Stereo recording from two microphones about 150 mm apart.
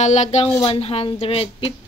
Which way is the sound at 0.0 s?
50° left (ahead or behind).